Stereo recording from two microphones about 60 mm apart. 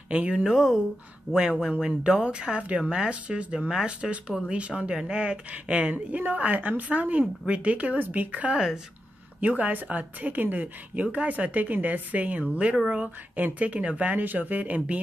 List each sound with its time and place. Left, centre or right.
0.1 s a woman's voice: centre
0.5 s a woman's voice: centre; by 8.5 s right
8.5 s speech: centre
9.4 s a woman's voice: right